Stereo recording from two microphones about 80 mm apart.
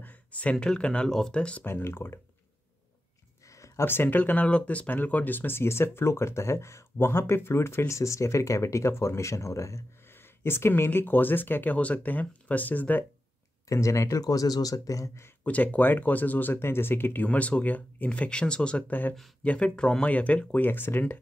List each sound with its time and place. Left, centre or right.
0.0 s speech: centre
1.6 s speech: left
3.4 s a sound: left
3.8 s speech: left
13.7 s speech: left
15.4 s speech: centre